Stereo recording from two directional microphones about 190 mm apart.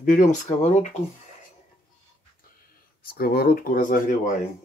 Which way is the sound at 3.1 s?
50° left (ahead or behind).